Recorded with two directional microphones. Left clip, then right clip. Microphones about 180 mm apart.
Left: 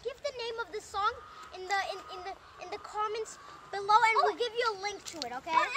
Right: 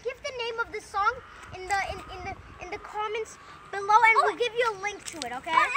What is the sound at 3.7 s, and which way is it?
Speech, 15° left (ahead or behind).